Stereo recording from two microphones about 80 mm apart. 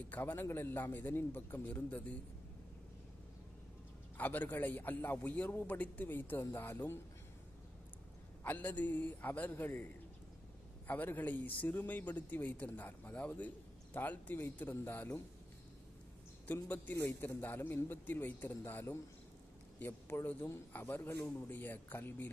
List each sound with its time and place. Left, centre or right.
0.1 s speech: left
4.2 s speech: left
8.5 s speech: left
10.9 s speech: left
16.6 s speech: left
16.9 s a man's voice: left